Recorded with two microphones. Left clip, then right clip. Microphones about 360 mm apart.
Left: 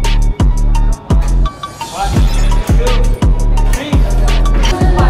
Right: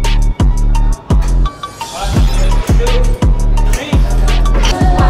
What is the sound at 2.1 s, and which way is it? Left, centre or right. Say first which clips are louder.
Music: right 1 dB; centre.